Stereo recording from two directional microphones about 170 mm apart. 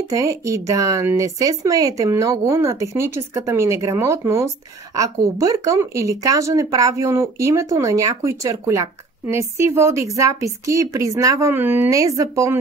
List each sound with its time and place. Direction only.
0.1 s speech: 20° right (ahead or behind)